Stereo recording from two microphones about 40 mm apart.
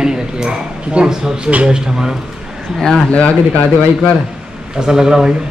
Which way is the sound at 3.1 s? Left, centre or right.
Left.